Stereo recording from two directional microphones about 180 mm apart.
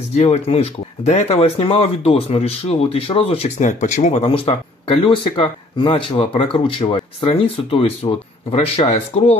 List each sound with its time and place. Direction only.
0.1 s speech: 40° left (ahead or behind)